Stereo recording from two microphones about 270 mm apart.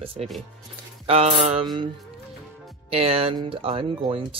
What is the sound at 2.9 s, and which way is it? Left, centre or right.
Speech, right.